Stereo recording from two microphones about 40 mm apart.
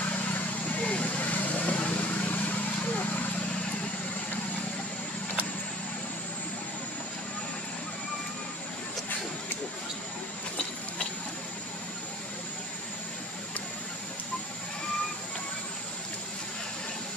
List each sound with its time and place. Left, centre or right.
0.7 s vehicle: left